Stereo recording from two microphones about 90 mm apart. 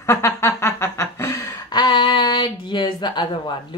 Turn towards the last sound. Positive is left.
turn(degrees=60)  # may be behind; listen again after turning